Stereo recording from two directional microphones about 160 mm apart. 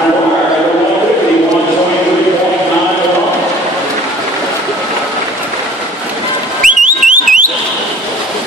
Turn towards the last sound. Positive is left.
turn(degrees=-55)  # may be behind; listen again after turning